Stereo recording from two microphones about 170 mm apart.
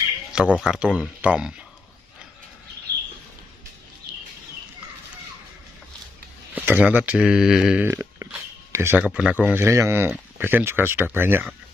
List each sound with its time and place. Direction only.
0.3 s speech: 5° right (ahead or behind)
6.5 s speech: 10° right (ahead or behind)
7.9 s a sound: 20° right (ahead or behind)
8.7 s speech: 10° right (ahead or behind)